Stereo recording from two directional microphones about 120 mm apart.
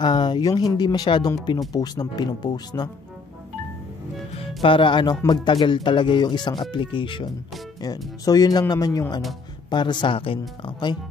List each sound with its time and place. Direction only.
0.0 s speech: 40° left (ahead or behind)
4.6 s speech: 45° left (ahead or behind)
7.8 s speech: 35° left (ahead or behind)